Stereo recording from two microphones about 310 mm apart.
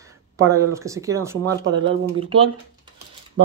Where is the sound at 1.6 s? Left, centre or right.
Right.